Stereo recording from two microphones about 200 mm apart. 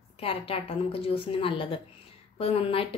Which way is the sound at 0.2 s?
30° left (ahead or behind).